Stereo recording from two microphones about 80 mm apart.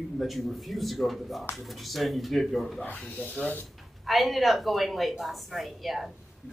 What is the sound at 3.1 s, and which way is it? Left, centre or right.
Speech, centre.